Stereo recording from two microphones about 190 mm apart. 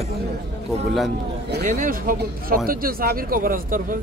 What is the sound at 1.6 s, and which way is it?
Speech, 45° right (ahead or behind).